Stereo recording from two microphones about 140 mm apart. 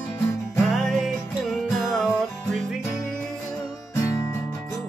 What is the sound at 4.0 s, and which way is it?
Music, 25° left (ahead or behind).